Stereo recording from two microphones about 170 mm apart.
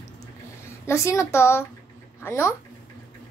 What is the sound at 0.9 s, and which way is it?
A child's voice, 15° left (ahead or behind).